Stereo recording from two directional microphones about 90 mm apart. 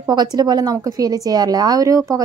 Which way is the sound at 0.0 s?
50° right (ahead or behind).